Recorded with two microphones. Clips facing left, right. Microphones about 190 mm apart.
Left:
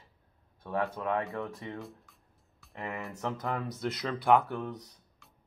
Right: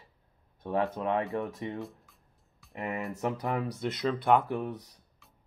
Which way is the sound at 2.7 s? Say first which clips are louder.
Right 4 dB; 15° right (ahead or behind).